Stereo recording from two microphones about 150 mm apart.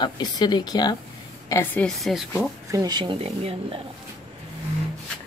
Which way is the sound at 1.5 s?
15° left (ahead or behind).